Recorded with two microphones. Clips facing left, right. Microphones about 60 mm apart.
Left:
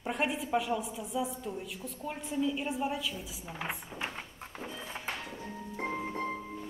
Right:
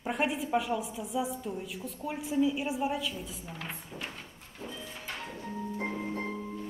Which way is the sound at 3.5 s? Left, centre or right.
Centre.